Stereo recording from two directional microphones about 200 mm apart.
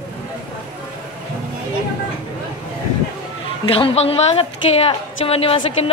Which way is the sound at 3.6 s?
25° left (ahead or behind).